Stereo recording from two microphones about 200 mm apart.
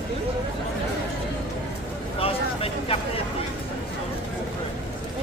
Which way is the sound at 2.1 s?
30° left (ahead or behind).